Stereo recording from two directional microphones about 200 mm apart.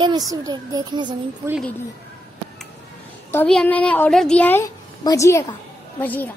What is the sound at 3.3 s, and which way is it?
A woman's voice, 5° left (ahead or behind).